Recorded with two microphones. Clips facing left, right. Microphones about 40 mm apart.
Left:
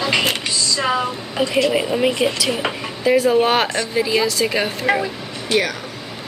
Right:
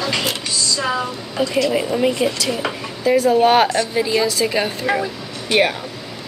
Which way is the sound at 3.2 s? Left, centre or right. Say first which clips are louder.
Right 3 dB; centre.